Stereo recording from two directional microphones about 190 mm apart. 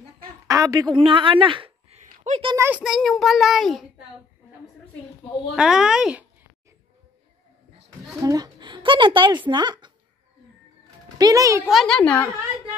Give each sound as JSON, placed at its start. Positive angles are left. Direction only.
{"t": 0.5, "sound": "a woman's voice", "side_deg": -15}
{"t": 2.4, "sound": "a child's voice", "side_deg": -15}
{"t": 2.8, "sound": "a child's voice", "side_deg": 0}
{"t": 5.6, "sound": "a child's voice", "side_deg": -5}
{"t": 8.2, "sound": "a woman's voice", "side_deg": -20}
{"t": 11.1, "sound": "a child's voice", "side_deg": -20}
{"t": 11.6, "sound": "a child's voice", "side_deg": 0}